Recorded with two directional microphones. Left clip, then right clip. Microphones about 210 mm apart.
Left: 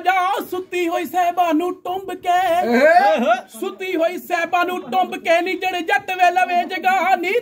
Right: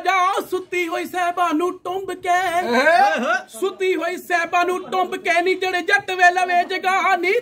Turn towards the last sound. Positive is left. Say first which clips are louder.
# left 1 dB
turn(degrees=-10)  # may be behind; listen again after turning